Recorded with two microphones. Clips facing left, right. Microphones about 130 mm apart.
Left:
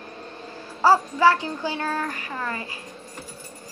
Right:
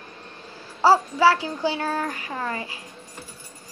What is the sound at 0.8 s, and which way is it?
Speech, 10° right (ahead or behind).